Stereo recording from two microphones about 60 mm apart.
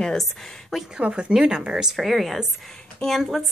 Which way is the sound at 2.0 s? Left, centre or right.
Centre.